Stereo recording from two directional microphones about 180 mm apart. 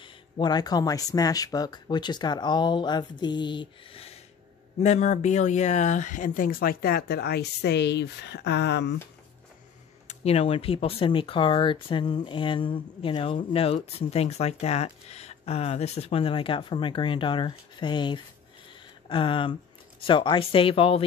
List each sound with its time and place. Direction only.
0.0 s speech: 25° left (ahead or behind); by 8.9 s 70° left (ahead or behind)
10.0 s speech: 35° left (ahead or behind)